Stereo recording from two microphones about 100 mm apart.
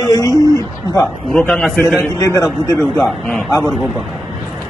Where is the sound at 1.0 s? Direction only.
15° left (ahead or behind).